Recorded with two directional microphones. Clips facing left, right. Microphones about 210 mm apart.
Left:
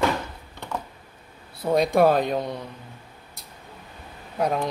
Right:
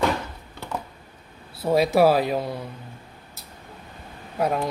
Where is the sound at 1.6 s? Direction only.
5° right (ahead or behind).